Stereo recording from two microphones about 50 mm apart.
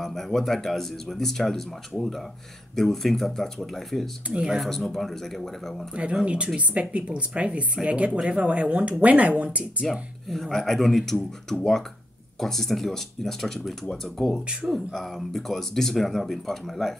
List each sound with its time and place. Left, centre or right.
0.0 s speech: centre
4.3 s speech: centre
4.6 s speech: centre
6.2 s speech: right
9.8 s speech: centre